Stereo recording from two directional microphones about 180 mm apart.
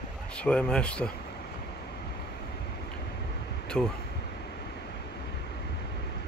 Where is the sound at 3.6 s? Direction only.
5° left (ahead or behind).